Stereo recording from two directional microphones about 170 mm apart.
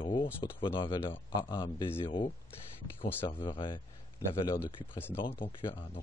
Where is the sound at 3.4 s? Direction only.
30° left (ahead or behind).